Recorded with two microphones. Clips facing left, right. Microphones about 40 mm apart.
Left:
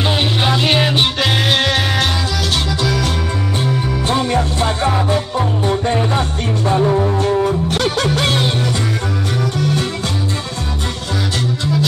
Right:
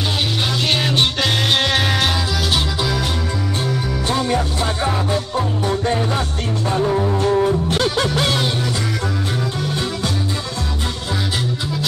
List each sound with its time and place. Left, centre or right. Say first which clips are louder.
0.4 s music: left 5 dB; centre
5.4 s music: left 3 dB; left
8.3 s music: left 2 dB; left
9.4 s music: left 4 dB; left